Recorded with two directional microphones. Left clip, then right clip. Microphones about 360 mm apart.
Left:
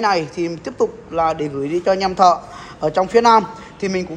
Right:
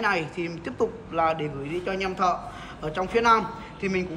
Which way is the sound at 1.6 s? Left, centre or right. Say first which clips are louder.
Left 12 dB; left.